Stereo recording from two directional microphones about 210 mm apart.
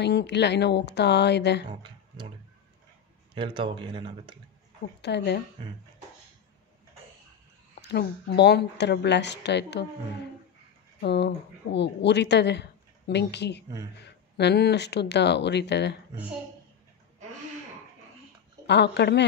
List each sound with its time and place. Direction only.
0.0 s speech: 55° left (ahead or behind)
1.7 s speech: 25° right (ahead or behind)
3.3 s speech: 25° right (ahead or behind)
5.0 s speech: 55° left (ahead or behind)
7.9 s speech: 50° left (ahead or behind)
11.0 s speech: 50° left (ahead or behind)
18.7 s speech: 55° left (ahead or behind)